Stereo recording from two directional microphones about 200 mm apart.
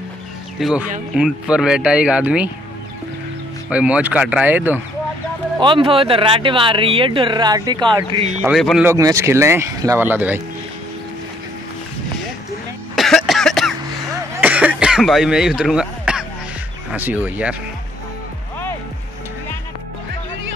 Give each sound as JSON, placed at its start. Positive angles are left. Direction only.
{"t": 0.6, "sound": "speech", "side_deg": 0}
{"t": 3.7, "sound": "speech", "side_deg": -5}
{"t": 5.6, "sound": "speech", "side_deg": -25}
{"t": 8.4, "sound": "speech", "side_deg": -5}
{"t": 8.8, "sound": "speech", "side_deg": -15}
{"t": 12.9, "sound": "cough", "side_deg": 0}
{"t": 16.9, "sound": "speech", "side_deg": -10}